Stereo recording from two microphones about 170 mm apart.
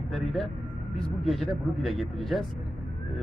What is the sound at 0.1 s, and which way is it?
A man's voice, centre (ahead or behind).